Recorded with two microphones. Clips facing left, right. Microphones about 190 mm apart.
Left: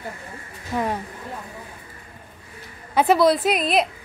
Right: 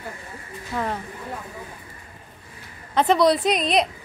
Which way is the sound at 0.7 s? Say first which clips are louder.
Left 3 dB; 15° left (ahead or behind).